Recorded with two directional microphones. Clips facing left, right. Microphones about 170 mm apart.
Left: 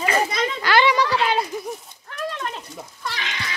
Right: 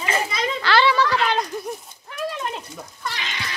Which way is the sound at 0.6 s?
15° left (ahead or behind).